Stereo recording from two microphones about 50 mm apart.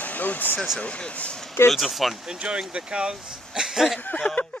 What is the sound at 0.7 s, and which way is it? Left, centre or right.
Speech, left.